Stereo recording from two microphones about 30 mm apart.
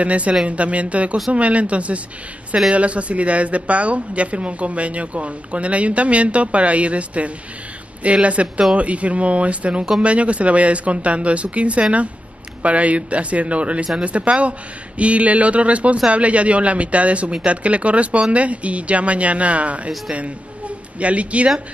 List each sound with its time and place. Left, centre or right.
0.0 s speech: right